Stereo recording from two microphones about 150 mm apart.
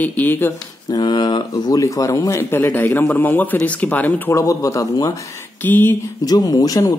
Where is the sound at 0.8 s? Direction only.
25° left (ahead or behind).